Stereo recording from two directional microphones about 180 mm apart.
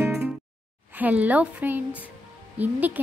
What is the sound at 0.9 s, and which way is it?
Speech, 10° right (ahead or behind).